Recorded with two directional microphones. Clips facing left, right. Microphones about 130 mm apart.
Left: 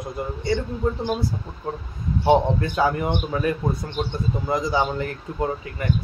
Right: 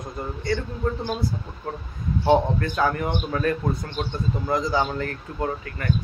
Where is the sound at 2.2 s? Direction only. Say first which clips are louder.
Left 1 dB; 15° left (ahead or behind).